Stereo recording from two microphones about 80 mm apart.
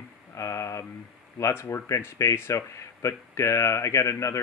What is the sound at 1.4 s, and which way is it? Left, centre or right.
Speech, left.